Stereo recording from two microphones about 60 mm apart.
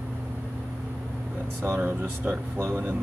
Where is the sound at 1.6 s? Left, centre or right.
Right.